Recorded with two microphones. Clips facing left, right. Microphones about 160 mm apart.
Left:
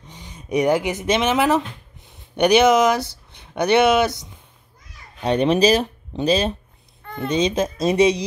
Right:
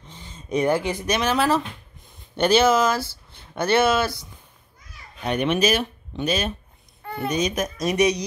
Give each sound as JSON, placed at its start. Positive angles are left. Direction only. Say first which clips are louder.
{"t": 0.0, "sound": "speech", "louder": "left 2 dB", "side_deg": 15}
{"t": 5.2, "sound": "speech", "louder": "left 5 dB", "side_deg": 30}